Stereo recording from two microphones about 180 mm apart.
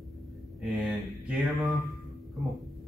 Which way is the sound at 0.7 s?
Centre (ahead or behind).